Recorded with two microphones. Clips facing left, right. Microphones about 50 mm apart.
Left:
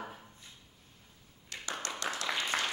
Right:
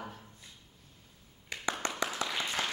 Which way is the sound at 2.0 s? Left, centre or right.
Centre.